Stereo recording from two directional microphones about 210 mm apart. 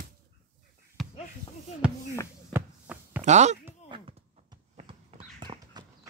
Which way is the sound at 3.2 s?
35° right (ahead or behind).